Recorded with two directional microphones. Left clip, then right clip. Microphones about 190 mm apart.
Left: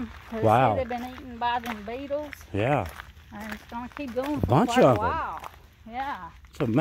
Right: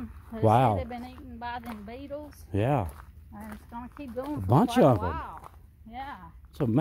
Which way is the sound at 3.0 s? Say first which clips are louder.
Left 7 dB; 35° left (ahead or behind).